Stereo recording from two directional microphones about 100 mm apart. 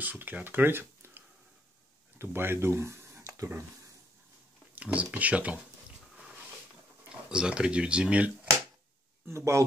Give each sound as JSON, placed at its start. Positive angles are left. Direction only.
{"t": 0.0, "sound": "speech", "side_deg": -15}
{"t": 4.7, "sound": "speech", "side_deg": -15}
{"t": 7.1, "sound": "speech", "side_deg": -10}
{"t": 9.3, "sound": "speech", "side_deg": -30}